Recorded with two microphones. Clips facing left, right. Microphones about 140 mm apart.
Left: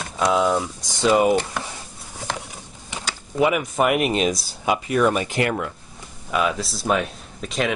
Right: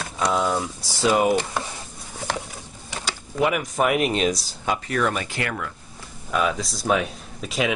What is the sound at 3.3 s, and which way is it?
Speech, 5° left (ahead or behind).